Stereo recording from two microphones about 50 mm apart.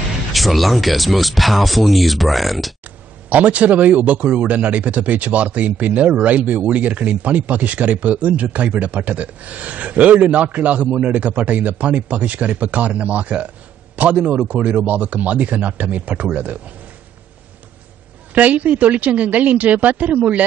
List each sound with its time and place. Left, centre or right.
0.3 s speech: centre
3.3 s a man's voice: right
18.3 s a woman's voice: right